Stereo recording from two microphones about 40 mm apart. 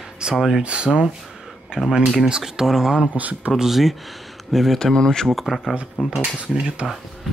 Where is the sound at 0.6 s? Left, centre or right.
Right.